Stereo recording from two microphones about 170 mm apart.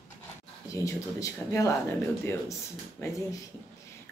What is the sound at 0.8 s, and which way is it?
Speech, 20° left (ahead or behind).